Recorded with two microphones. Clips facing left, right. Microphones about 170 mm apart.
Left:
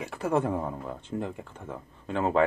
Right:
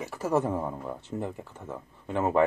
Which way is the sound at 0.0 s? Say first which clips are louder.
Even; centre (ahead or behind).